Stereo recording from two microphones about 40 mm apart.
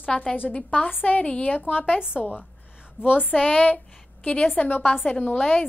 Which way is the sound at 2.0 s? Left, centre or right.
Right.